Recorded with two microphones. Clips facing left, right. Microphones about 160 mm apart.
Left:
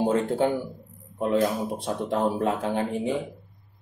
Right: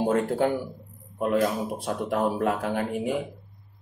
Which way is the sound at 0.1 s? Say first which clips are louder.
Even; 25° left (ahead or behind).